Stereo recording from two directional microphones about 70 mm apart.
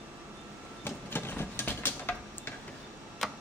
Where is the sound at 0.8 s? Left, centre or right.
Left.